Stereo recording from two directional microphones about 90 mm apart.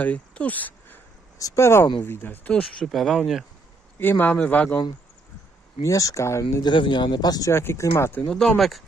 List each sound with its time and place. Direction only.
0.0 s speech: 15° left (ahead or behind)
1.4 s speech: 35° left (ahead or behind)
2.8 s speech: centre (ahead or behind)
4.0 s speech: 20° left (ahead or behind)
5.8 s speech: 40° left (ahead or behind)
6.6 s speech: 60° left (ahead or behind)
7.5 s speech: 30° left (ahead or behind)
8.3 s speech: 5° left (ahead or behind)